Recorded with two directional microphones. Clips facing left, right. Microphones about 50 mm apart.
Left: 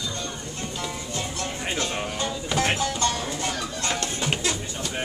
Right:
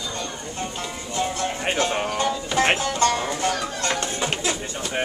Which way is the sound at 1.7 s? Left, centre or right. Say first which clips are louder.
Right 6 dB; right.